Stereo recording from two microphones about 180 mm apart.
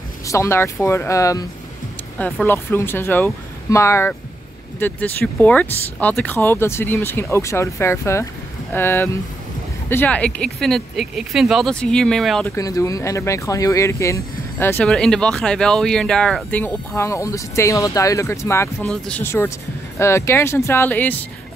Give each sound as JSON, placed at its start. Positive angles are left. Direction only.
{"t": 0.3, "sound": "speech", "side_deg": 15}
{"t": 12.5, "sound": "speech", "side_deg": 20}